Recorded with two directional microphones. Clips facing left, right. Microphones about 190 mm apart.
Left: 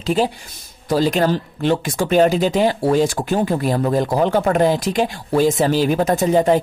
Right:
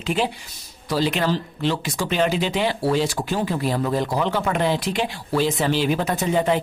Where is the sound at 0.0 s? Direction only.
40° left (ahead or behind).